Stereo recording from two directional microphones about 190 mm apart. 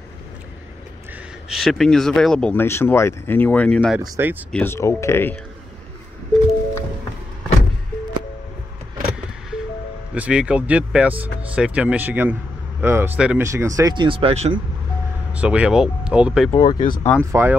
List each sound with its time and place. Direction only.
1.5 s speech: centre (ahead or behind)
3.9 s speech: 5° right (ahead or behind)
4.5 s speech: 10° left (ahead or behind)
10.1 s speech: 5° right (ahead or behind); by 14.6 s 30° right (ahead or behind)
15.3 s speech: 5° right (ahead or behind)
16.4 s speech: 15° left (ahead or behind)
16.7 s speech: 45° left (ahead or behind)
17.0 s speech: 10° left (ahead or behind)
17.3 s speech: 15° right (ahead or behind)